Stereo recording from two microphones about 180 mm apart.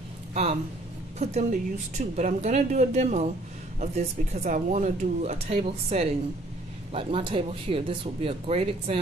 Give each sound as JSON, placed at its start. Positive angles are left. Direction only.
{"t": 0.3, "sound": "speech", "side_deg": -35}